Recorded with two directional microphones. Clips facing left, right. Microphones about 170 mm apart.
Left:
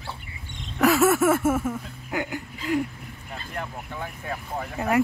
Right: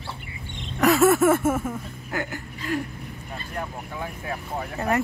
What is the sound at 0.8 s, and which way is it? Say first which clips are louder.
Speech: right 1 dB; 5° left (ahead or behind).